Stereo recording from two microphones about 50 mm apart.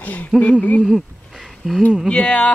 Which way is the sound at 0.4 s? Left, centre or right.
Left.